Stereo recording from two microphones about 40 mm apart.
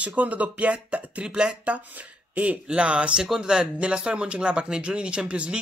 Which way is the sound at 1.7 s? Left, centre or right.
Right.